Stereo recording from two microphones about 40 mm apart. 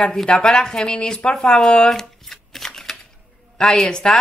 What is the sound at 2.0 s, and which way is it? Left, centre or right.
Shuffling cards, centre.